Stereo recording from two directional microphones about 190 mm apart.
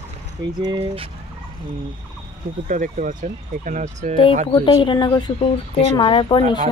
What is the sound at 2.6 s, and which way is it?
Speech, 45° right (ahead or behind).